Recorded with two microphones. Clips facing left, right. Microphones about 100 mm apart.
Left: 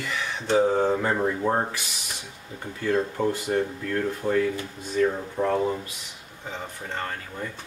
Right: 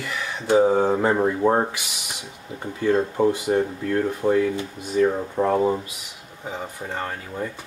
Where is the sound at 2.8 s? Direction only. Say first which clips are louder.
Right 5 dB; 20° right (ahead or behind).